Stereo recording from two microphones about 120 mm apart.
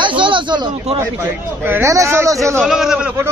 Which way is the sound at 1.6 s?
20° right (ahead or behind).